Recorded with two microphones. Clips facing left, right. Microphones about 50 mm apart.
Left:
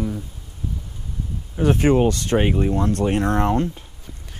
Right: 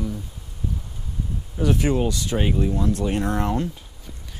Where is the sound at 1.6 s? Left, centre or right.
Left.